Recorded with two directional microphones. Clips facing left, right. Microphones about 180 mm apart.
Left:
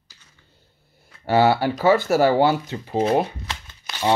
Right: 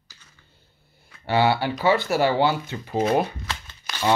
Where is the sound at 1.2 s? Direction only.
45° left (ahead or behind).